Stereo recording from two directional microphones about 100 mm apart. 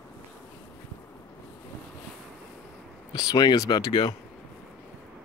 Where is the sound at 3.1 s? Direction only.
45° left (ahead or behind).